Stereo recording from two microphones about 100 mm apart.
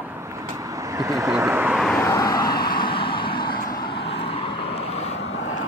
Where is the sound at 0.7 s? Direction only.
35° right (ahead or behind).